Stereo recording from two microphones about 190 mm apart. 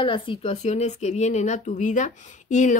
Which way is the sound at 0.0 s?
25° left (ahead or behind).